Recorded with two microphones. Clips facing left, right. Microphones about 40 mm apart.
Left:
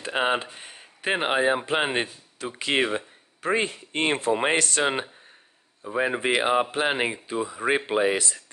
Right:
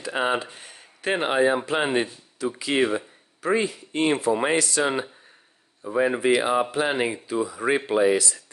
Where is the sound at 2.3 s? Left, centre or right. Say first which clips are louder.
Right 2 dB; left.